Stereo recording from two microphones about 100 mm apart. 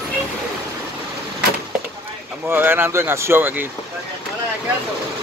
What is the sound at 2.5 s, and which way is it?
Speech, 20° right (ahead or behind).